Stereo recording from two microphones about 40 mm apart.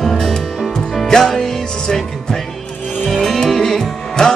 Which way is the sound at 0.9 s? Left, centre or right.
Centre.